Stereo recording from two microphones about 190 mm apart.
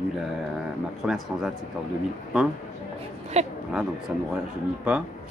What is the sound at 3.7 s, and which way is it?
Speech, 5° right (ahead or behind).